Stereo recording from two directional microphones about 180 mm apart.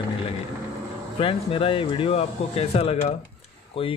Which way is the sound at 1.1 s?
30° left (ahead or behind).